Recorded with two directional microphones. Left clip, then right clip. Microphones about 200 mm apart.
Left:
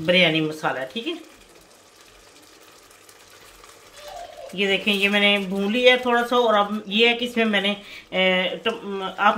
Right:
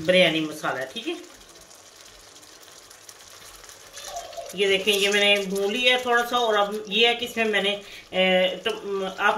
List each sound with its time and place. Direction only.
0.0 s speech: 50° left (ahead or behind)
4.6 s speech: 55° left (ahead or behind)